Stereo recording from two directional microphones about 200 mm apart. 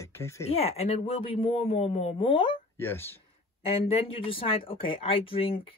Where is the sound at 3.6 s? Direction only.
30° left (ahead or behind).